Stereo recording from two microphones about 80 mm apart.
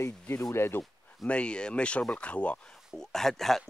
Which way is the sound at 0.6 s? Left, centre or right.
Left.